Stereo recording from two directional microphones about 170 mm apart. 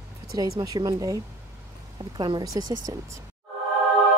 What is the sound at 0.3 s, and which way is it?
Speech, 20° right (ahead or behind).